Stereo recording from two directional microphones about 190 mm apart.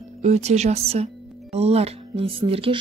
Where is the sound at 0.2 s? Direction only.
35° right (ahead or behind).